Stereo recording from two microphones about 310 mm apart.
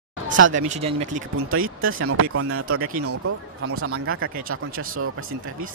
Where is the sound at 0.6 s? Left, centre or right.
Right.